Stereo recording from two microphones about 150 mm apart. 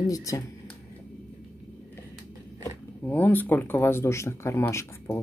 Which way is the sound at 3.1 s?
10° left (ahead or behind).